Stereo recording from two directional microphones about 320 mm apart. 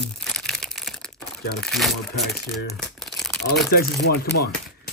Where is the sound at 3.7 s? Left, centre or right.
Left.